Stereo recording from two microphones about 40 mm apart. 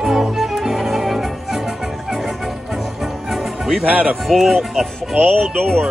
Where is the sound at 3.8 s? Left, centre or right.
Right.